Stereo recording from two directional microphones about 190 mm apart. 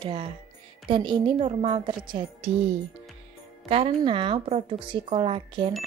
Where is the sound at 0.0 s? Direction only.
25° right (ahead or behind).